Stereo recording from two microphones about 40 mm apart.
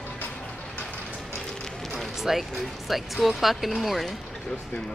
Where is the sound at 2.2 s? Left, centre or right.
Centre.